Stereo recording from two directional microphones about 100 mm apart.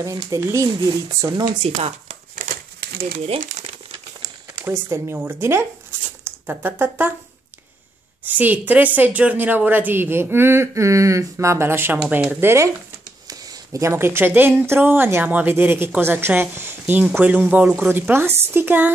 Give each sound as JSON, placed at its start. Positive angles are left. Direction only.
{"t": 0.0, "sound": "speech", "side_deg": -30}
{"t": 1.5, "sound": "speech", "side_deg": -80}
{"t": 4.6, "sound": "speech", "side_deg": -25}
{"t": 8.2, "sound": "speech", "side_deg": -20}
{"t": 13.3, "sound": "speech", "side_deg": -40}